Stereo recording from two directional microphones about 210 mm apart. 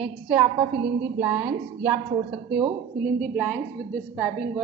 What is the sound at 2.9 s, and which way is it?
Speech, 40° right (ahead or behind).